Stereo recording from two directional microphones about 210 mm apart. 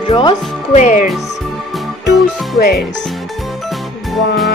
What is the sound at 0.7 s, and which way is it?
Speech, 35° left (ahead or behind).